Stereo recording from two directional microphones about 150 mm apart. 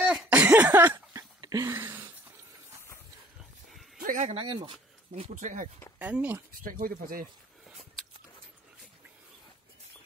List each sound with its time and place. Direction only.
0.0 s a sound: 5° right (ahead or behind)
0.9 s a sound: 25° right (ahead or behind)
4.0 s speech: 65° right (ahead or behind)
4.3 s speech: 35° right (ahead or behind)
5.3 s speech: 55° right (ahead or behind)
5.9 s speech: 10° right (ahead or behind)
6.5 s speech: 65° right (ahead or behind)